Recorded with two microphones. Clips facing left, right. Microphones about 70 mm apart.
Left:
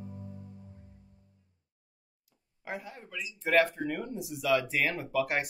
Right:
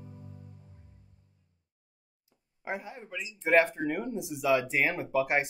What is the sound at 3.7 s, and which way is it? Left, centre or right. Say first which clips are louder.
Speech: right 3 dB; right.